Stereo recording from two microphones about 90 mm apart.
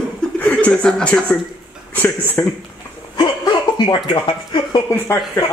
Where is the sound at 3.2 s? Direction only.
50° left (ahead or behind).